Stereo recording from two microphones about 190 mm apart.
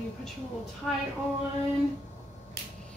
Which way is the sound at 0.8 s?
Centre (ahead or behind).